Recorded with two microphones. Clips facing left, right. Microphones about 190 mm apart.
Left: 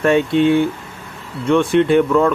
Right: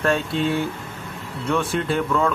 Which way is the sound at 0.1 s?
65° left (ahead or behind).